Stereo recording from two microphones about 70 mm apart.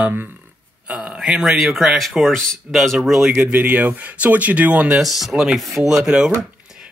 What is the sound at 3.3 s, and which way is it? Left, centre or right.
Speech, centre.